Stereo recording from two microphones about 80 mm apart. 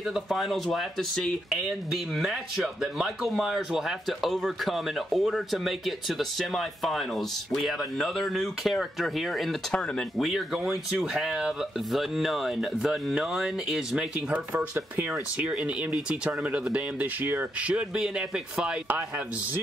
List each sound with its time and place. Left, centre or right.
0.1 s speech: centre
1.5 s speech: centre
17.2 s speech: right
17.6 s speech: centre